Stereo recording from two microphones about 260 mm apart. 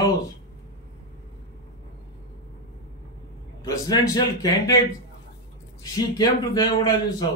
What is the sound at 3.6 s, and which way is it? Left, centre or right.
A man's voice, centre.